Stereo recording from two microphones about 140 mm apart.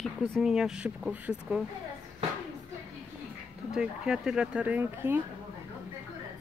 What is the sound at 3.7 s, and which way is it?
Speech, 5° right (ahead or behind).